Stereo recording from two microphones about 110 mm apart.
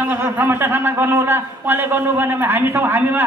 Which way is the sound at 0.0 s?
20° right (ahead or behind).